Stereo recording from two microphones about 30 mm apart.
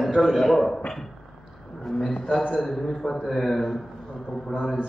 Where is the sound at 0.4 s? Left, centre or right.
Centre.